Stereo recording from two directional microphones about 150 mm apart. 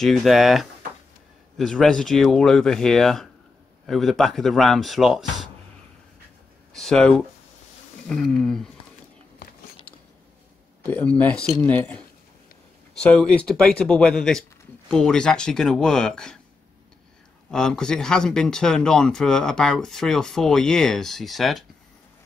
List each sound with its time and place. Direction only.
0.0 s speech: centre (ahead or behind)
6.7 s speech: 5° left (ahead or behind)
9.4 s a sound: 75° left (ahead or behind)
10.8 s speech: 10° left (ahead or behind)
17.5 s speech: 5° left (ahead or behind)